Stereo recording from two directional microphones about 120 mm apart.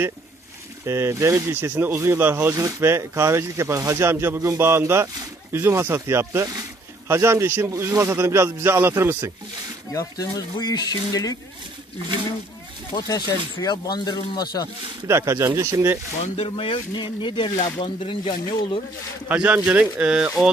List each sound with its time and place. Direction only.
0.8 s speech: 25° right (ahead or behind)
9.9 s speech: 30° left (ahead or behind)
13.0 s speech: 25° left (ahead or behind)
15.0 s speech: 20° right (ahead or behind)
16.3 s speech: 50° left (ahead or behind)
19.2 s speech: 10° right (ahead or behind)